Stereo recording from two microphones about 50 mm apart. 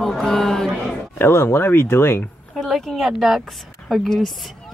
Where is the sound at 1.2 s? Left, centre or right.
Left.